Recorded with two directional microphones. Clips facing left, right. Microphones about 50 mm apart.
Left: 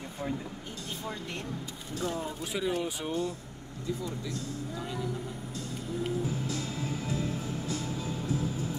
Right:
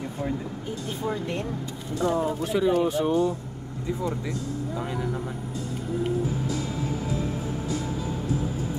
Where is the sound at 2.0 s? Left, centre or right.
Right.